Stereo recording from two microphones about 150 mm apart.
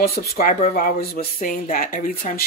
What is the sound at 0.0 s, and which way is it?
Speech, 90° left.